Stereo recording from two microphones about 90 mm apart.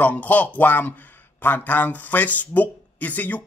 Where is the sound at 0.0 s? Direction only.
15° left (ahead or behind).